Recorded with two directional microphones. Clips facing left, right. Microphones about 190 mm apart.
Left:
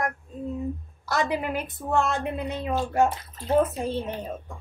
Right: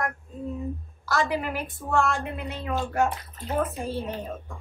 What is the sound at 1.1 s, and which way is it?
A woman's voice, 20° left (ahead or behind).